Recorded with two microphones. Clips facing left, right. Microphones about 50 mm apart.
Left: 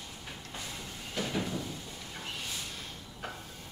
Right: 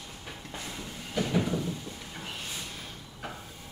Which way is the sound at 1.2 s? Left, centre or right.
Centre.